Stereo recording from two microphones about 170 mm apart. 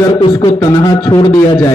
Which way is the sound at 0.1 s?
25° left (ahead or behind).